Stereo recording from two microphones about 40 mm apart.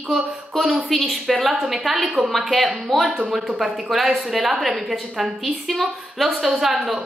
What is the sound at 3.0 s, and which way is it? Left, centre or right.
Speech, right.